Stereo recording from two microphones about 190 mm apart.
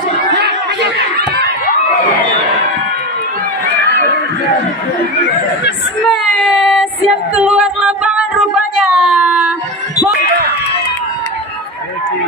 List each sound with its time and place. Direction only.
0.3 s chatter: 60° right (ahead or behind)
6.0 s child singing: centre (ahead or behind)
7.4 s a sound: 5° right (ahead or behind)